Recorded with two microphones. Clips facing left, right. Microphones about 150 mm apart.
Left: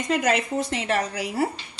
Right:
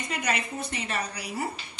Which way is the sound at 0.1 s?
90° left.